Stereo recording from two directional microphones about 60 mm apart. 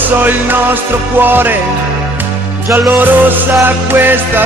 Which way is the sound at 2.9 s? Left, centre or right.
Right.